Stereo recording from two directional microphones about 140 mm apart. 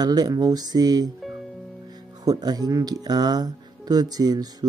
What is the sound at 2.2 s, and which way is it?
Speech, 30° right (ahead or behind).